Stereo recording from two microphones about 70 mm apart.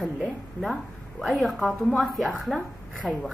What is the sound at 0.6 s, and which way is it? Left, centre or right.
A woman's voice, centre.